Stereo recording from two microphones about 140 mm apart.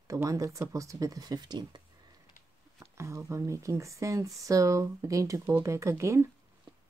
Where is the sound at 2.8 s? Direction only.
20° right (ahead or behind).